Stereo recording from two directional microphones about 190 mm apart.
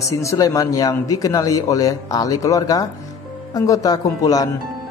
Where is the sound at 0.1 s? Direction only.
15° left (ahead or behind).